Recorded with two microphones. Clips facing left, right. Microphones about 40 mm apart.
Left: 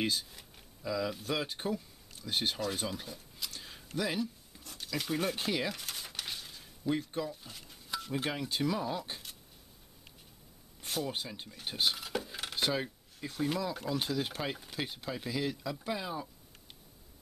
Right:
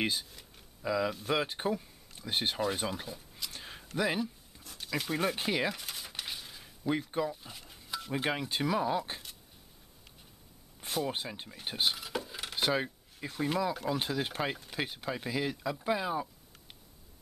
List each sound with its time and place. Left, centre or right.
0.0 s speech: right
3.5 s a sound: right
4.6 s speech: centre
5.8 s a sound: centre
6.9 s speech: centre
8.1 s speech: centre
11.1 s speech: centre
12.5 s speech: centre